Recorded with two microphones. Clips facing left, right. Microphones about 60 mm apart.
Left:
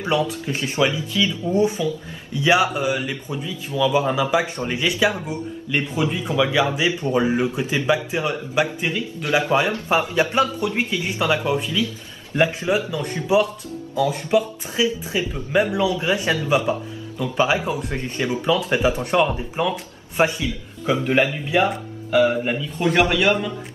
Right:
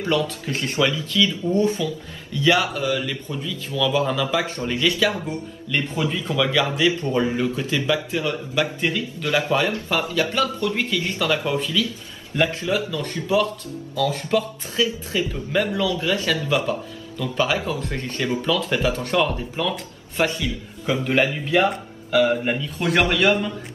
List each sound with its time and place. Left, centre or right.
0.0 s speech: left
22.4 s a man's voice: centre